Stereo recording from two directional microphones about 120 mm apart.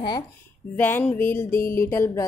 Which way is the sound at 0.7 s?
15° left (ahead or behind).